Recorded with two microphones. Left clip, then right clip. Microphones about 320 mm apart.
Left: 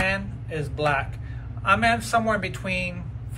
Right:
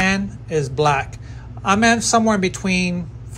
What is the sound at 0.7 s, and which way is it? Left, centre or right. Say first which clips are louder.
A man's voice: right 5 dB; centre.